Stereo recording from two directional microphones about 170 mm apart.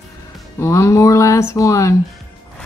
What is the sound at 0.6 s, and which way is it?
Speech, 15° left (ahead or behind).